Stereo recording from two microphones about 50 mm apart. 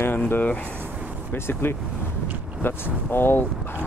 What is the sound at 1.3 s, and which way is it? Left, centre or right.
Speech, left.